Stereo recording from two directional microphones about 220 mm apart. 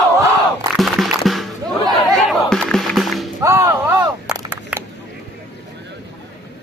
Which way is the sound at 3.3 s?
10° right (ahead or behind).